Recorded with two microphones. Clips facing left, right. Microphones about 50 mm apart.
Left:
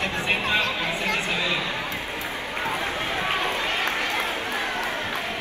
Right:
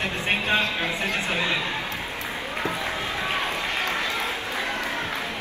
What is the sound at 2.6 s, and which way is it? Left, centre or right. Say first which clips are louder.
Run: left 2 dB; left.